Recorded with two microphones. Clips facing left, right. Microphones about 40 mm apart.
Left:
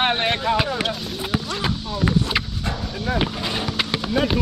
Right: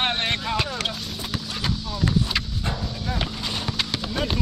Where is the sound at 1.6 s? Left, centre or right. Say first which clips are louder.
Left 3 dB; centre.